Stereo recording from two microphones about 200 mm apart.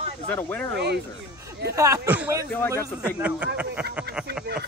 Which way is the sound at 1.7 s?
15° right (ahead or behind).